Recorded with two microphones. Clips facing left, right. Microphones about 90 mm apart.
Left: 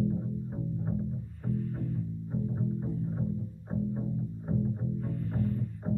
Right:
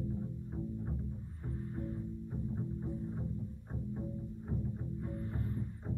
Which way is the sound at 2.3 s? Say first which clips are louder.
Left 9 dB; 25° left (ahead or behind).